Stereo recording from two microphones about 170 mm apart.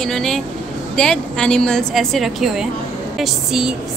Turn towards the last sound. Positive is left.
turn(degrees=0)  # may be behind; listen again after turning